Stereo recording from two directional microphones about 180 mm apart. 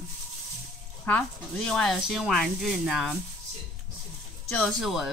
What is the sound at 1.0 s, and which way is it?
Speech, 5° left (ahead or behind).